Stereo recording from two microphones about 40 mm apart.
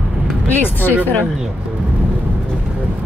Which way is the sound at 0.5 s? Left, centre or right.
Left.